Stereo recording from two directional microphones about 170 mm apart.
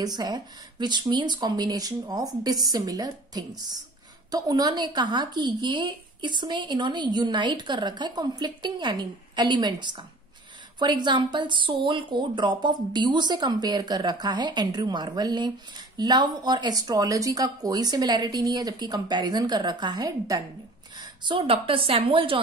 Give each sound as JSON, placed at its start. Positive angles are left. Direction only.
{"t": 0.0, "sound": "a woman's voice", "side_deg": -25}
{"t": 21.0, "sound": "a sound", "side_deg": -25}
{"t": 21.4, "sound": "a woman's voice", "side_deg": -30}